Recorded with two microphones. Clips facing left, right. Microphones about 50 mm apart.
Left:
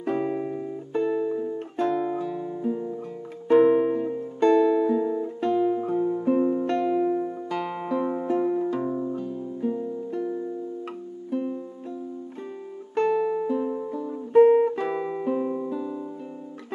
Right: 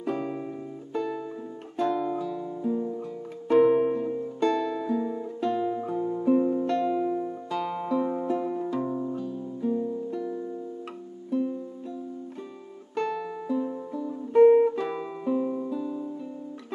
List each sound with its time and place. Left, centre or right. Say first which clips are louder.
0.0 s music: left 4 dB; left
4.4 s music: left 8 dB; left
12.9 s music: left 7 dB; left